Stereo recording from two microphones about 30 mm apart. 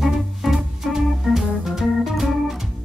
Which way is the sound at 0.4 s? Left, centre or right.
Centre.